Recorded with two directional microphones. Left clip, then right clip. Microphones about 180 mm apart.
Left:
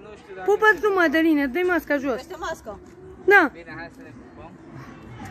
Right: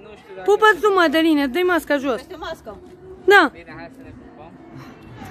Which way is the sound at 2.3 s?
15° left (ahead or behind).